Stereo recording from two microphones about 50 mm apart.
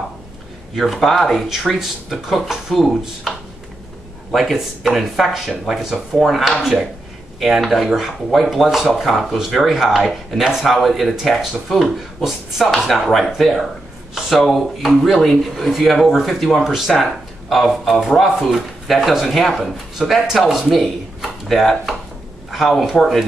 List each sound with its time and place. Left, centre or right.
0.7 s speech: centre
4.3 s speech: centre